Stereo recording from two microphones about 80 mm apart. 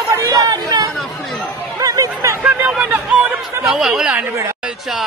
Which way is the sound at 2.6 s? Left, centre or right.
Centre.